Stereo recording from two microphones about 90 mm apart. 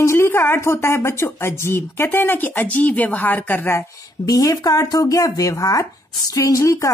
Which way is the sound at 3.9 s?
40° left (ahead or behind).